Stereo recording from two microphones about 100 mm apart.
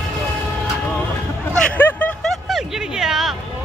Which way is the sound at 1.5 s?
15° left (ahead or behind).